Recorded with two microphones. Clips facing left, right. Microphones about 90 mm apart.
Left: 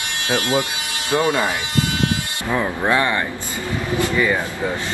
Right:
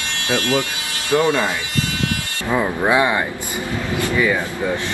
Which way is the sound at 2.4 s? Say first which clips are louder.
Right 2 dB; 15° right (ahead or behind).